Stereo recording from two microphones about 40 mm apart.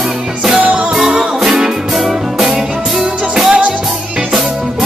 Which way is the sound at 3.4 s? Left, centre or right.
Right.